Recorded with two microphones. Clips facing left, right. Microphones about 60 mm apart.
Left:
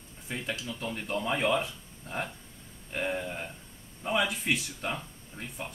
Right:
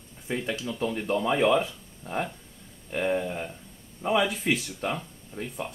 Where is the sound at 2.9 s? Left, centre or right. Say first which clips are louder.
Right 5 dB; centre.